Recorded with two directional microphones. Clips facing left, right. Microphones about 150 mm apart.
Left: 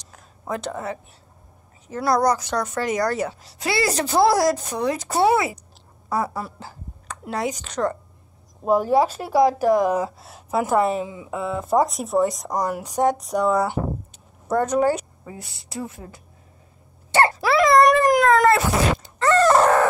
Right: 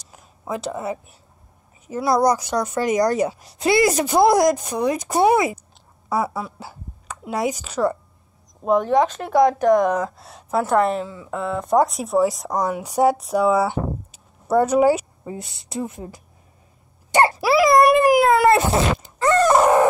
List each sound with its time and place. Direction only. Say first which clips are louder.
0.0 s a sound: right 1 dB; 5° right (ahead or behind)
1.9 s a woman's voice: right 2 dB; 10° right (ahead or behind)
8.6 s speech: right 1 dB; 5° left (ahead or behind)
11.1 s speech: even; 15° left (ahead or behind)
11.3 s speech: right 2 dB; 5° left (ahead or behind)
14.1 s a sound: right 5 dB; 10° right (ahead or behind)
15.2 s a woman's voice: right 6 dB; 20° right (ahead or behind)
17.1 s wail: right 2 dB; 15° right (ahead or behind)
18.5 s a woman's voice: right 2 dB; 25° right (ahead or behind)
19.2 s dog: right 1 dB; 15° right (ahead or behind)